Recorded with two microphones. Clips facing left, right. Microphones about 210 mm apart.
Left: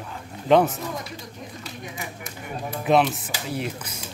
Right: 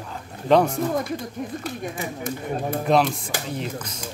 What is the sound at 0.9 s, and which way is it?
Speech, 55° right (ahead or behind).